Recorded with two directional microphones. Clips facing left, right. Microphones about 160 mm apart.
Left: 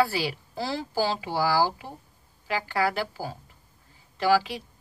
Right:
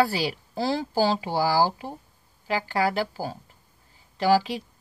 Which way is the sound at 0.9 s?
25° right (ahead or behind).